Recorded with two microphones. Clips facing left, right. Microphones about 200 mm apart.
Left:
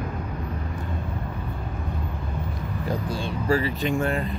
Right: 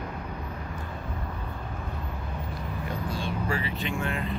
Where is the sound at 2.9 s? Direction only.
35° left (ahead or behind).